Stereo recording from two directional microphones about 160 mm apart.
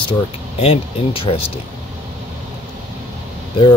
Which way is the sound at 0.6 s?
35° left (ahead or behind).